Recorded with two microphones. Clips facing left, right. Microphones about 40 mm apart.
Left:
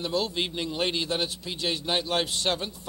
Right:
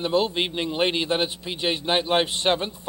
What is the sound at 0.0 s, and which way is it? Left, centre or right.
A man's voice, right.